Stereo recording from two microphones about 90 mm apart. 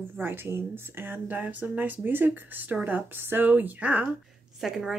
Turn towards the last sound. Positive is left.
turn(degrees=-5)  # may be behind; listen again after turning